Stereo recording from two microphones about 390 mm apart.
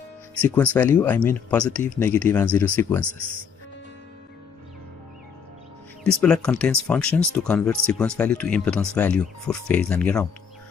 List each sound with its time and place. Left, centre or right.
0.4 s speech: centre
6.0 s speech: centre